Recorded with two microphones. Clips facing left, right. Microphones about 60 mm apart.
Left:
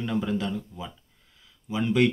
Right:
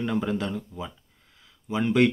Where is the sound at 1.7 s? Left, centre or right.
Right.